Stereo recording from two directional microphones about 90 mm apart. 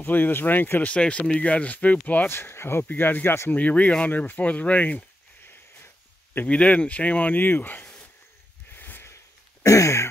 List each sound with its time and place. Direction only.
0.0 s speech: 20° left (ahead or behind)
6.3 s speech: 15° left (ahead or behind)
8.7 s a sound: 20° left (ahead or behind)